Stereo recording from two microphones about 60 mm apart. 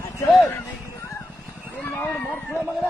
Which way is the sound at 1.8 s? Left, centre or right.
Left.